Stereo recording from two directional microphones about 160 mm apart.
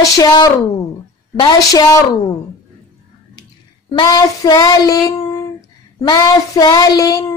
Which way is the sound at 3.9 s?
25° left (ahead or behind).